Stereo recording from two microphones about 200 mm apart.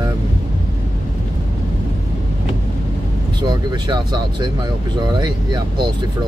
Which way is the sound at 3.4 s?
20° right (ahead or behind).